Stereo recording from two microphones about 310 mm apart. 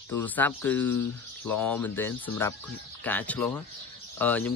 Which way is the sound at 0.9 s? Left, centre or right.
Left.